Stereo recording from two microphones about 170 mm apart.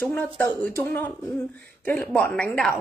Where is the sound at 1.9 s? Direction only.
10° left (ahead or behind).